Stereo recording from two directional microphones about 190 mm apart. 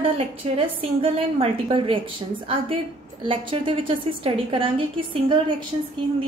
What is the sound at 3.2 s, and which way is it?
A woman's voice, 30° right (ahead or behind).